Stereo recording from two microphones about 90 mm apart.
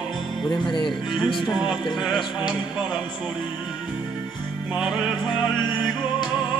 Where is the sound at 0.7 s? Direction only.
65° left (ahead or behind).